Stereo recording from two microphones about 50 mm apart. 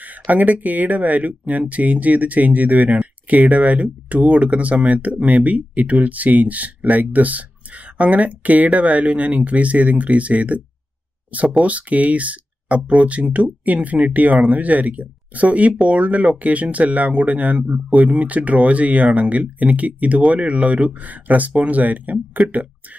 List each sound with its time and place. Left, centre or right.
0.0 s speech: right
11.6 s speech: right